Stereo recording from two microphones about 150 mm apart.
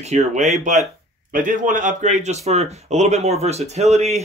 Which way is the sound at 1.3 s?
60° right (ahead or behind).